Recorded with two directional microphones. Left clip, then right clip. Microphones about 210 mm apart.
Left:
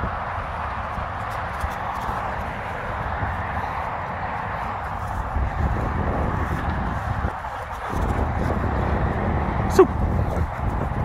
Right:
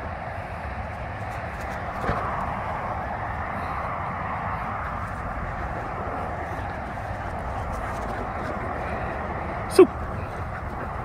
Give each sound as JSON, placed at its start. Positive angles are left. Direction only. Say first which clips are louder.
{"t": 9.8, "sound": "speech", "louder": "even", "side_deg": -30}